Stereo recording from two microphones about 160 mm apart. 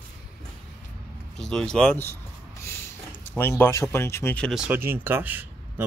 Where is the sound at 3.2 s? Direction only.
15° left (ahead or behind).